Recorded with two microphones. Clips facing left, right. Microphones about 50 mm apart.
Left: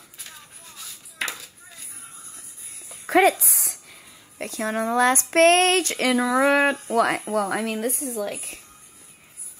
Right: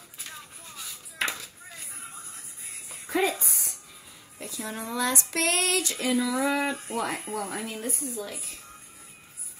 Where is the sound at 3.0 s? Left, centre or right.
Left.